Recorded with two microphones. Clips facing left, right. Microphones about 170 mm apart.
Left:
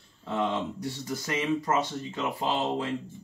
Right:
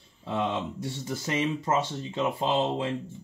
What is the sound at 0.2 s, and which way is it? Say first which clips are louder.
Speech: right 1 dB; 15° right (ahead or behind).